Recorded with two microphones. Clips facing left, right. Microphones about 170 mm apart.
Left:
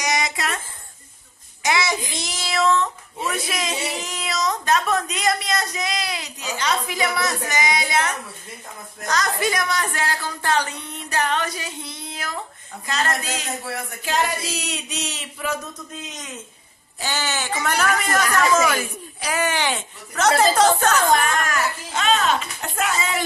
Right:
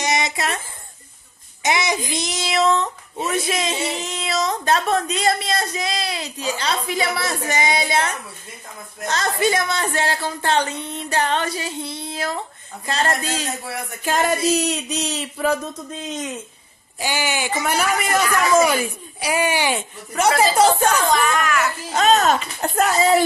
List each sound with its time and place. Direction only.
0.0 s a sound: 25° right (ahead or behind)
1.6 s a child's voice: 20° right (ahead or behind)
14.0 s speech: 45° right (ahead or behind)
17.0 s speech: 10° right (ahead or behind)
21.1 s speech: 45° left (ahead or behind)
21.9 s speech: 40° right (ahead or behind)